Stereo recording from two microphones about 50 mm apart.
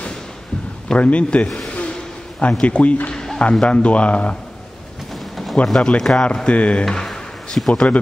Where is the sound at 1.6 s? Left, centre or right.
Left.